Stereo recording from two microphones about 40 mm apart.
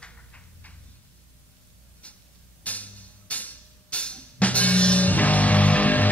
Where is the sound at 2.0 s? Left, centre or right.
Left.